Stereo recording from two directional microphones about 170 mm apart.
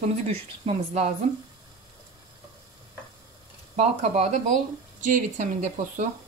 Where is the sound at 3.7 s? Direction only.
40° right (ahead or behind).